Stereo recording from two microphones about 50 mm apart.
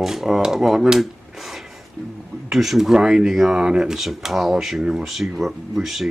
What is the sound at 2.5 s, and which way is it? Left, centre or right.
Speech, centre.